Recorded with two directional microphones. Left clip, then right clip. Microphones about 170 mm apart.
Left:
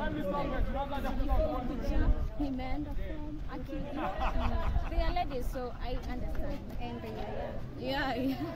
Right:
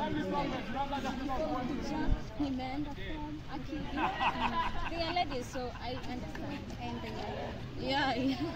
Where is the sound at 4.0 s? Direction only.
50° left (ahead or behind).